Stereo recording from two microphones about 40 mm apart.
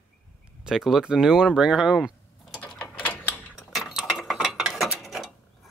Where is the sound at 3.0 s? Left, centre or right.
Left.